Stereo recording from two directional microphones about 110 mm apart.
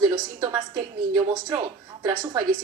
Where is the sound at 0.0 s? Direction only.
40° right (ahead or behind).